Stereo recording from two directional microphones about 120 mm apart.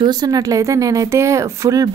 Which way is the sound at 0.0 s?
35° right (ahead or behind).